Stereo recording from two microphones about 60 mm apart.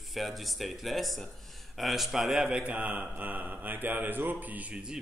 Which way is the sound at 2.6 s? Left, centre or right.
Right.